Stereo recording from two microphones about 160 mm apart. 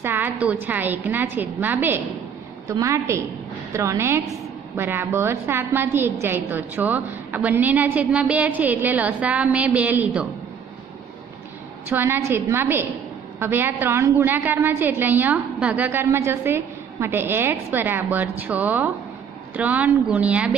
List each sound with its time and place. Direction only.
0.0 s a woman's voice: 15° right (ahead or behind)
11.9 s a woman's voice: 15° right (ahead or behind)